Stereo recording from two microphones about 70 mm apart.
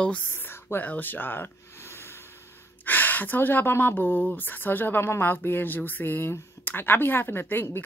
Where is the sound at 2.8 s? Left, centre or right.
Left.